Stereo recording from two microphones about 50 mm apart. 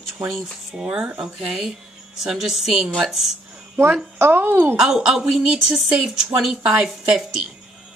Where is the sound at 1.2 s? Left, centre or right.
Centre.